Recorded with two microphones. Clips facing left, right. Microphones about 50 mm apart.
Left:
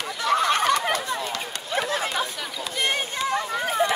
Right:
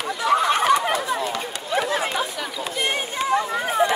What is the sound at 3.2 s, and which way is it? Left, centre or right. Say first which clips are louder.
Run: right 5 dB; right.